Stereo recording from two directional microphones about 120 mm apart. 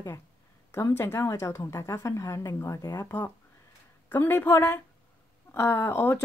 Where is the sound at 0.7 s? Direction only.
20° left (ahead or behind).